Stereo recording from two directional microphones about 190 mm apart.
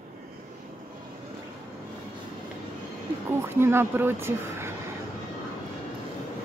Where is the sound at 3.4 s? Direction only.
10° right (ahead or behind).